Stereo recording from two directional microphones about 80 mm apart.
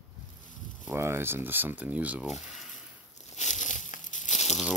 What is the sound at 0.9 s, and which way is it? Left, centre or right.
Speech, right.